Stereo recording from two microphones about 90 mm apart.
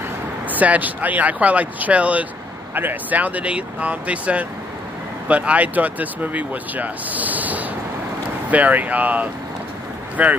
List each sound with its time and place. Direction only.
0.5 s speech: 20° right (ahead or behind)